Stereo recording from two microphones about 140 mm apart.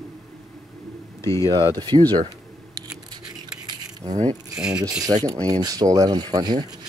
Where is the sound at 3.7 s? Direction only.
30° right (ahead or behind).